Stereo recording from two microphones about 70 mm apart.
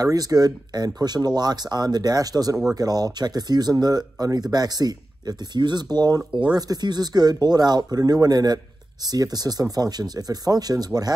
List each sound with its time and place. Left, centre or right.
0.0 s speech: right